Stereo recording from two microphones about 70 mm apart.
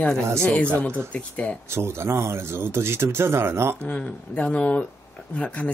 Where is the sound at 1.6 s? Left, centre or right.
Right.